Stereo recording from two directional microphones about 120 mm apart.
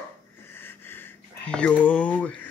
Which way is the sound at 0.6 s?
20° left (ahead or behind).